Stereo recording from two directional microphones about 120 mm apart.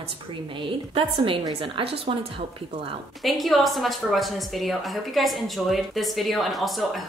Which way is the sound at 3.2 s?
Centre (ahead or behind).